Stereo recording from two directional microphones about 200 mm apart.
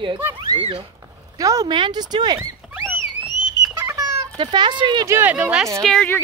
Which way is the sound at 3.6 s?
15° right (ahead or behind).